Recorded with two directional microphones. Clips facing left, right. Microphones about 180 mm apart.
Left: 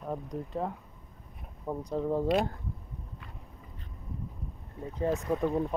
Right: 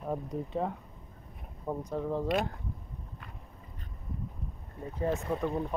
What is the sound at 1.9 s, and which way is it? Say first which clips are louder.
Speech: left 4 dB; 25° left (ahead or behind).